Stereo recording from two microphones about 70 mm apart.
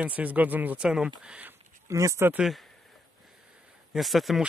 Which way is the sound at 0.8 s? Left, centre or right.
Centre.